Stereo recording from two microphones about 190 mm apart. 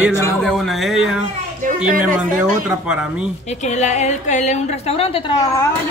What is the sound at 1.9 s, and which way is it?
Speech, 45° right (ahead or behind).